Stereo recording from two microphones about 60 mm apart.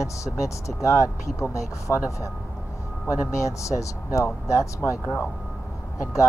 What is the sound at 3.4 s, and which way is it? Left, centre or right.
Speech, left.